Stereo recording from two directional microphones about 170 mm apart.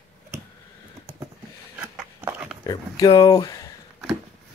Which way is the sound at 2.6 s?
20° left (ahead or behind).